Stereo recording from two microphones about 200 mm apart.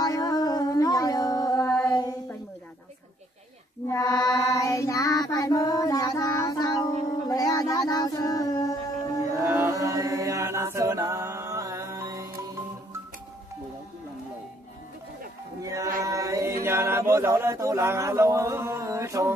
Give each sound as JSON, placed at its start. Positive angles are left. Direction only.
{"t": 0.0, "sound": "a sound", "side_deg": 20}
{"t": 1.9, "sound": "child singing", "side_deg": 20}
{"t": 3.9, "sound": "child singing", "side_deg": 20}
{"t": 9.4, "sound": "chant", "side_deg": -10}
{"t": 15.6, "sound": "music", "side_deg": -15}
{"t": 16.0, "sound": "chant", "side_deg": -15}